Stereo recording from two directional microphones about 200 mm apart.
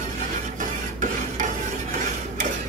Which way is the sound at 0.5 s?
40° right (ahead or behind).